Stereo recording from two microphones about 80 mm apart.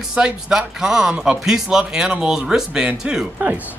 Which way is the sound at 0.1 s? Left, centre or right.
Centre.